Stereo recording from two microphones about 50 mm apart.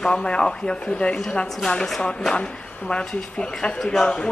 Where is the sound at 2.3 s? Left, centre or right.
Centre.